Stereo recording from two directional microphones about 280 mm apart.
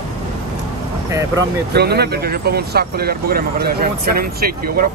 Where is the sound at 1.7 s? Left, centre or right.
Right.